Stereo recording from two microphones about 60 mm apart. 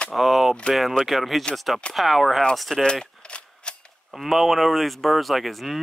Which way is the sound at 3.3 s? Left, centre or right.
Centre.